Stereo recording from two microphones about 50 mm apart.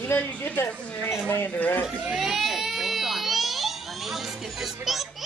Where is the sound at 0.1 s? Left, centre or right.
Left.